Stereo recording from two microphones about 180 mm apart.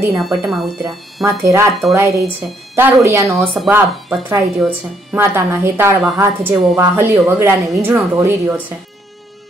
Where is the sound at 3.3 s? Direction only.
Centre (ahead or behind).